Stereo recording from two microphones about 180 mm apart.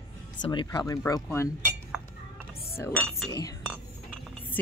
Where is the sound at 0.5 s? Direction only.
20° left (ahead or behind).